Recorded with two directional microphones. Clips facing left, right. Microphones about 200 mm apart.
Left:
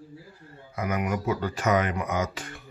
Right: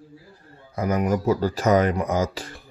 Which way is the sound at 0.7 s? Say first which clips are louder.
Right 5 dB; 35° right (ahead or behind).